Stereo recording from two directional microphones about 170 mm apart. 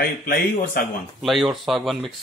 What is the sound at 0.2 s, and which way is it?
Speech, 60° left (ahead or behind).